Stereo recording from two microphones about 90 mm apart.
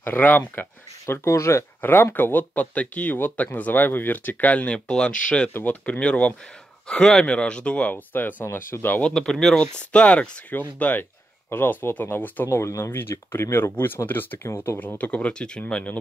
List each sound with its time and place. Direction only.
0.0 s speech: 20° left (ahead or behind)
9.0 s speech: 5° left (ahead or behind)
12.4 s speech: 30° left (ahead or behind); by 16.0 s 15° left (ahead or behind)